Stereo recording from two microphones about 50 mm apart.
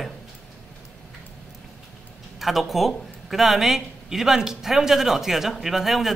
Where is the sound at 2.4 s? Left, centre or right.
Centre.